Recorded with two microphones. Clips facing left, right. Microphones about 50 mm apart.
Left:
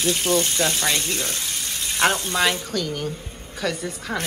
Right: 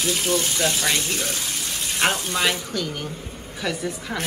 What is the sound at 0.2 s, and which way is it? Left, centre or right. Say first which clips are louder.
Speech: left 1 dB; left.